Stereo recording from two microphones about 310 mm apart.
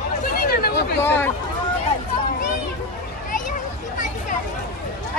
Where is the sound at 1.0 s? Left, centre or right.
Centre.